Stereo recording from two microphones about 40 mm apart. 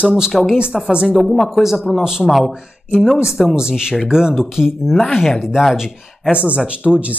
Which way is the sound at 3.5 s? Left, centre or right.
Centre.